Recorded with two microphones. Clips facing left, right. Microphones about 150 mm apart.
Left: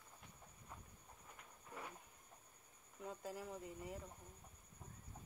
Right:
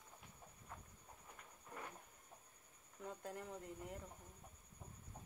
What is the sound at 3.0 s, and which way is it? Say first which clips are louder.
Speech: left 1 dB; 5° left (ahead or behind).